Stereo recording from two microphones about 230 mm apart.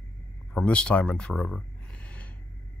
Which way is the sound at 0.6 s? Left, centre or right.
Centre.